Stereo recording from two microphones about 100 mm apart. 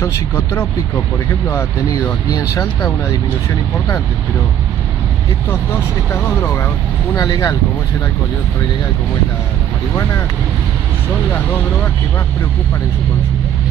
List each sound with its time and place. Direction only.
1.9 s speech: 35° left (ahead or behind)
7.2 s speech: 40° left (ahead or behind)